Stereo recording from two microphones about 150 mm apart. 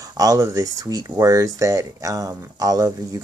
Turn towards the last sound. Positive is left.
turn(degrees=-25)  # may be behind; listen again after turning